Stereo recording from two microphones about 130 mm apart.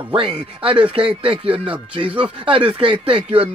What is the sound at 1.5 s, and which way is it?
Speech, 10° right (ahead or behind).